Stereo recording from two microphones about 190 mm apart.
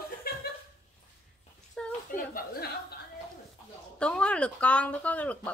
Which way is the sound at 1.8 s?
5° left (ahead or behind).